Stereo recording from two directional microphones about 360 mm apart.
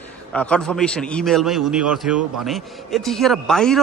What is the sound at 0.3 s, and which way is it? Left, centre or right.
A man's voice, centre.